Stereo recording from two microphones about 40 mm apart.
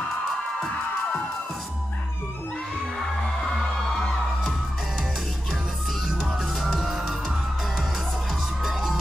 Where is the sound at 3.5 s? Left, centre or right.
Centre.